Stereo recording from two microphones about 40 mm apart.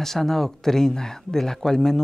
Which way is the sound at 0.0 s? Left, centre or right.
Centre.